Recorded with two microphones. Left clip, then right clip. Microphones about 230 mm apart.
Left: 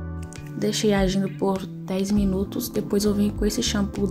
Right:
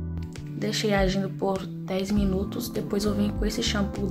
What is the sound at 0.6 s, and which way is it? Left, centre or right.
A woman's voice, centre.